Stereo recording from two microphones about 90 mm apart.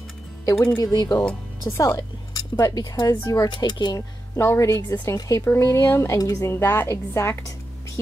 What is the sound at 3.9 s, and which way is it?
Speech, 30° left (ahead or behind).